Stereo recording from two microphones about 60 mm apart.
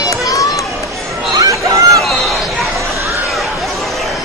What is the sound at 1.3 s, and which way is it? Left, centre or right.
Chatter, right.